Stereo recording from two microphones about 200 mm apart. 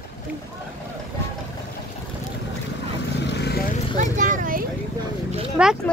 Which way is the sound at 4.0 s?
40° right (ahead or behind).